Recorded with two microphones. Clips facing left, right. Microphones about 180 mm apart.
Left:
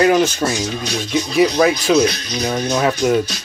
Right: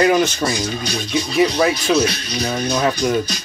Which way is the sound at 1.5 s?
5° right (ahead or behind).